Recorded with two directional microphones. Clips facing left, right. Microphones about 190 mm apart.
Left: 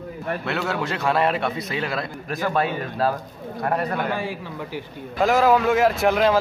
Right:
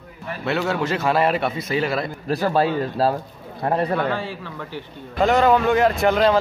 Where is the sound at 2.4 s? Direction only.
30° right (ahead or behind).